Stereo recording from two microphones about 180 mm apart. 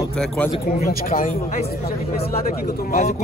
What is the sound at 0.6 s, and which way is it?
Speech, 55° left (ahead or behind).